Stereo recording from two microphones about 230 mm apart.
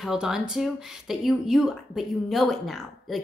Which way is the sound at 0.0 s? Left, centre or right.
Centre.